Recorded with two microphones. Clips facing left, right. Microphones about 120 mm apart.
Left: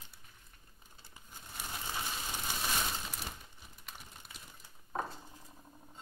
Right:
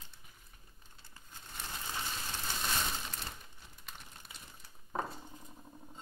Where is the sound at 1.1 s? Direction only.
10° left (ahead or behind).